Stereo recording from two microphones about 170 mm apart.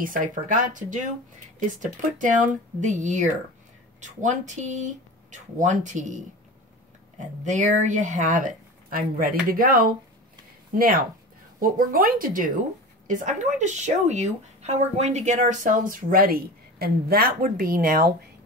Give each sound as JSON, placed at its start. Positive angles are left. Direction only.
{"t": 0.0, "sound": "speech", "side_deg": -55}